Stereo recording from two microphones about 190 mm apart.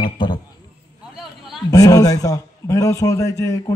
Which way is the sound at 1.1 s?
Centre (ahead or behind).